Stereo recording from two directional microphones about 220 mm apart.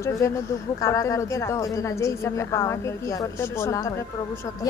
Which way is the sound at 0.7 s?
15° left (ahead or behind).